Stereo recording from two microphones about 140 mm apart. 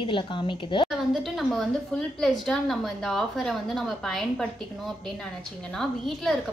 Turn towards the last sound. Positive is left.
turn(degrees=0)  # may be behind; listen again after turning